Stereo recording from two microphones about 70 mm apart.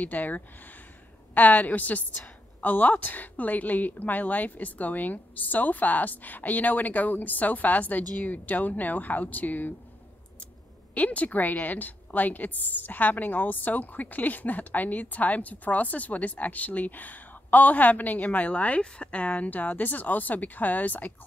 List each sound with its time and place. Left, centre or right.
0.0 s a woman's voice: left
11.0 s a woman's voice: left